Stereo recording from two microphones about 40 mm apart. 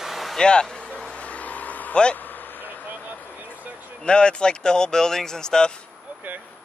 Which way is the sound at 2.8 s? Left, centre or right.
Right.